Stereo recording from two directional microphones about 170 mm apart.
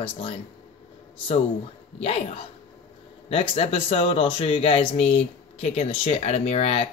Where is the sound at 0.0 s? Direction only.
35° left (ahead or behind).